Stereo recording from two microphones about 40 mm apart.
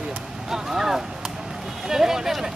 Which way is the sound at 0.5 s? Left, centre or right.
Centre.